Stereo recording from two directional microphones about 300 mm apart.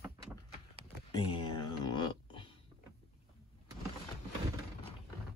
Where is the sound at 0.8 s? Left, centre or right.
Centre.